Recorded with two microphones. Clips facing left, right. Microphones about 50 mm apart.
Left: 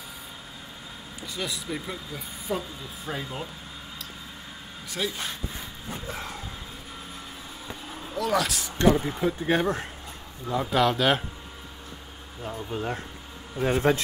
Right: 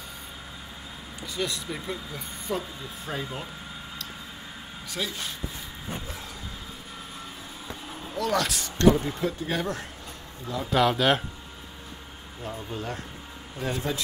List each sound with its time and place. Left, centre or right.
1.2 s speech: centre
4.9 s speech: centre
7.6 s vehicle: centre
8.7 s speech: centre
9.5 s speech: left
10.7 s speech: centre
12.4 s speech: centre
12.7 s speech: left
13.7 s a man's voice: left